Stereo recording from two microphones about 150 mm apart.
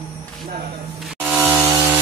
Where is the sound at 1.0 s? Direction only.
Centre (ahead or behind).